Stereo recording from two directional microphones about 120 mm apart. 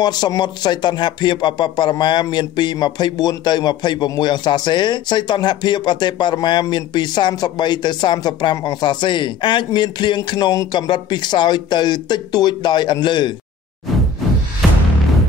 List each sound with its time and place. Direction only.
0.0 s a man's voice: 35° left (ahead or behind)